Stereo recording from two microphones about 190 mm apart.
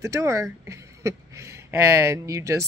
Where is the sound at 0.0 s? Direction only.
15° right (ahead or behind).